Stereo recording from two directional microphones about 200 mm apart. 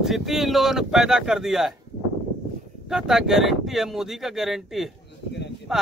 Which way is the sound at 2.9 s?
Centre (ahead or behind).